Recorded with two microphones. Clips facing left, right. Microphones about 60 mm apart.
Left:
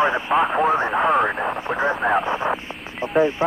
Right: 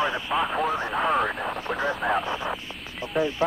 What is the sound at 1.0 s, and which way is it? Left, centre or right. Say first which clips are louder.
Speech: left 3 dB; centre.